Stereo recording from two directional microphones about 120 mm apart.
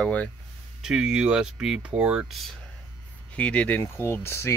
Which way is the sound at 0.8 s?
5° right (ahead or behind).